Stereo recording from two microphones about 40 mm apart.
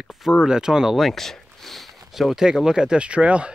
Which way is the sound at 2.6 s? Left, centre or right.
Centre.